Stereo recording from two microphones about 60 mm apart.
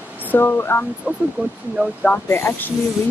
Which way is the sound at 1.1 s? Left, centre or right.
Centre.